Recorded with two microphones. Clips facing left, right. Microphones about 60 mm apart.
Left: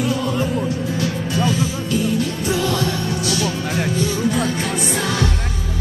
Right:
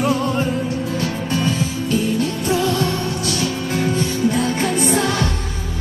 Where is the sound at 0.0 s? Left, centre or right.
Right.